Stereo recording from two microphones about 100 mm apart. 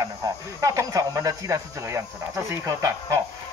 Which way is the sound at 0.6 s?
35° right (ahead or behind).